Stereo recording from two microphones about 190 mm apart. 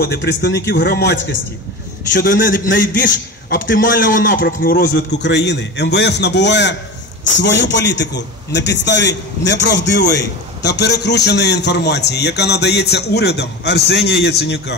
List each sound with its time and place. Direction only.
0.0 s a man's voice: 65° left (ahead or behind)
2.1 s a man's voice: 45° left (ahead or behind)